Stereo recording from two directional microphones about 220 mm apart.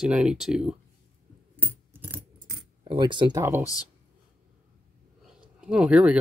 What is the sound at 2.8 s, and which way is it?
Speech, 20° right (ahead or behind).